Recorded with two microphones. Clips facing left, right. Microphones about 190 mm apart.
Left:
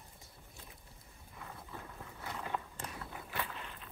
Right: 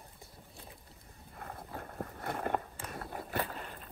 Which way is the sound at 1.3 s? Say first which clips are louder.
Right 4 dB; 55° right (ahead or behind).